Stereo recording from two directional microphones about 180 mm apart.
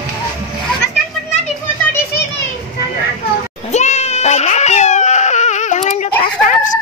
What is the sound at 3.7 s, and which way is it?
Baby cry, 40° left (ahead or behind).